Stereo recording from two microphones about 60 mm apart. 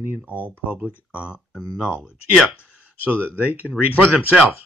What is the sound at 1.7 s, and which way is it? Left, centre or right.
Speech, centre.